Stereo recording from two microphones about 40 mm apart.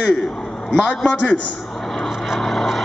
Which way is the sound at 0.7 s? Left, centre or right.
Centre.